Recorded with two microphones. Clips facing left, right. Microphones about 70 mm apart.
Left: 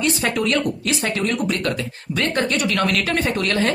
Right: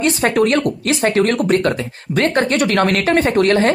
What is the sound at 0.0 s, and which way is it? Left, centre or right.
Speech, right.